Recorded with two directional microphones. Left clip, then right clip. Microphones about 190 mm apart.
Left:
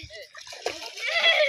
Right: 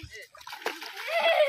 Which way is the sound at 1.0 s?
30° right (ahead or behind).